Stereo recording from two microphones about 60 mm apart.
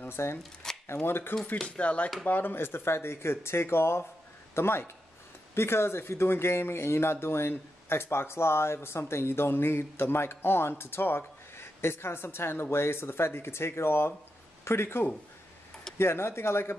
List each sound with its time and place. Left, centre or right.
0.0 s speech: left
0.6 s shuffling cards: centre
1.0 s speech: left
1.8 s speech: left
2.2 s speech: left